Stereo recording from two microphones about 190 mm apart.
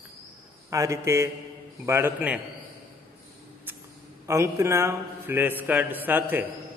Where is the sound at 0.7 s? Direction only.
15° right (ahead or behind).